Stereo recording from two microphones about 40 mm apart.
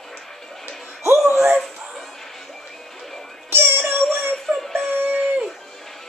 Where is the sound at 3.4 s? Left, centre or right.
Right.